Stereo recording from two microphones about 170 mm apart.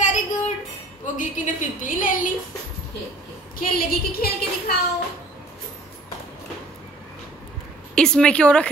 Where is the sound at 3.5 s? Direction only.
60° left (ahead or behind).